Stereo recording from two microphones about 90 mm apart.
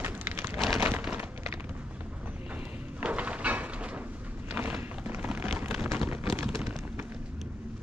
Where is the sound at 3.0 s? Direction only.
15° right (ahead or behind).